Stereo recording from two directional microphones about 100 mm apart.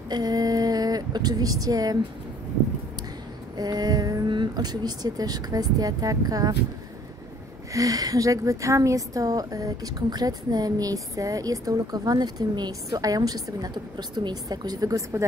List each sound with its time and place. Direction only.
0.1 s speech: 40° right (ahead or behind)
3.5 s a woman's voice: 40° right (ahead or behind)
7.7 s a woman's voice: 35° right (ahead or behind)